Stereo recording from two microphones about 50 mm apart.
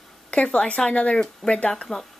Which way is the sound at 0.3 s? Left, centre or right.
Left.